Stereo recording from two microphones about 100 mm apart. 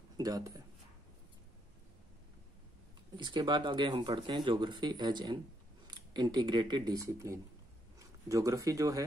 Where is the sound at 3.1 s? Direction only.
50° right (ahead or behind).